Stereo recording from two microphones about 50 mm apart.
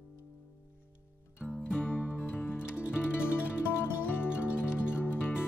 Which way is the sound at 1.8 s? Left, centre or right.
Left.